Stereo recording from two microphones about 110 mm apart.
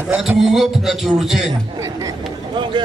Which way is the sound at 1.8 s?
35° right (ahead or behind).